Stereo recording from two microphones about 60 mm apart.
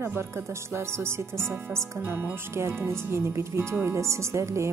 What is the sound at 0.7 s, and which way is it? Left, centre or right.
A woman's voice, right.